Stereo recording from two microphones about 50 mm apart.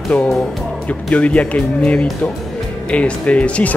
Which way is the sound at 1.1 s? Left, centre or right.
Left.